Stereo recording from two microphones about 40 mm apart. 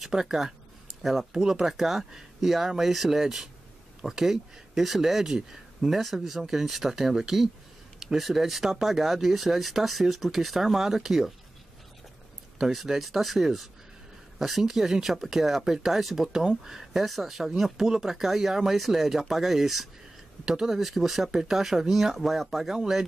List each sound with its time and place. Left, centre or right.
0.1 s speech: centre
12.5 s speech: centre